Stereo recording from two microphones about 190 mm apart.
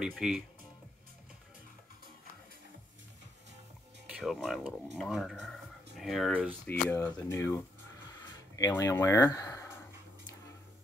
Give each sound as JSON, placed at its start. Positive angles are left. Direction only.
{"t": 0.0, "sound": "speech", "side_deg": -5}
{"t": 4.1, "sound": "speech", "side_deg": 0}
{"t": 8.5, "sound": "speech", "side_deg": 20}